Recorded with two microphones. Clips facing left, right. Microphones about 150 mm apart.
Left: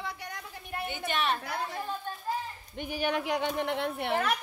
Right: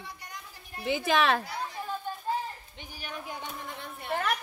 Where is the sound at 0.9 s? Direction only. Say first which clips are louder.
Right 7 dB; 90° right.